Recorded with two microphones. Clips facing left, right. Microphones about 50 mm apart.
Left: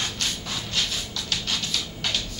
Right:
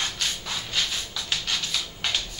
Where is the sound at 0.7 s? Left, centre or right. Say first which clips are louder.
Even; centre.